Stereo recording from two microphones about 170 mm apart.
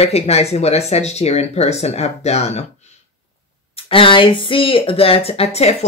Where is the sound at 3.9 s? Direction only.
30° left (ahead or behind).